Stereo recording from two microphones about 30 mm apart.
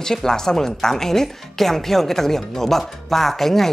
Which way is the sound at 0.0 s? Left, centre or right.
Centre.